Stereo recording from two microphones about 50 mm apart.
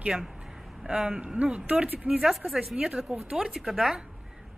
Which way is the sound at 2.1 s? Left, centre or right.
Centre.